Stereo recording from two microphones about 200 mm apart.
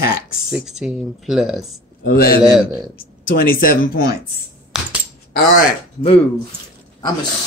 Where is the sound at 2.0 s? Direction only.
50° left (ahead or behind).